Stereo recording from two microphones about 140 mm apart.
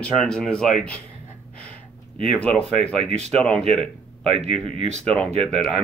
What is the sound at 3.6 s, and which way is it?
Speech, 45° right (ahead or behind).